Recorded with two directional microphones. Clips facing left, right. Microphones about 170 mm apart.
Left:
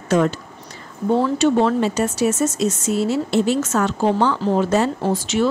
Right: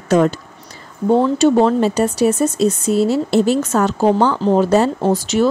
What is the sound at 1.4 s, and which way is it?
Speech, 35° right (ahead or behind).